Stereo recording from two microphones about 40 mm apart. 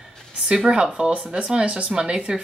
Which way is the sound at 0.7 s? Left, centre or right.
Right.